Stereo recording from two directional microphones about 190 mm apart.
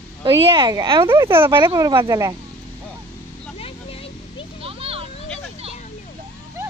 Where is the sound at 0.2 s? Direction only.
25° right (ahead or behind).